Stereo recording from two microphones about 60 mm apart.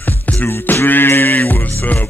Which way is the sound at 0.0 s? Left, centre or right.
Left.